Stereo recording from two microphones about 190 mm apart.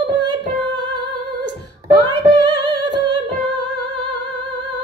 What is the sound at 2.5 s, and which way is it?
Singing, 20° right (ahead or behind).